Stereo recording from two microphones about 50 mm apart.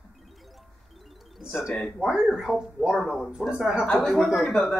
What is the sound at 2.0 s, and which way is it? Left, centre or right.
Speech, centre.